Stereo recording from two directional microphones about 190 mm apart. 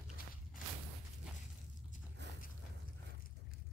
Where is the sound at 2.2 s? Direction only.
65° right (ahead or behind).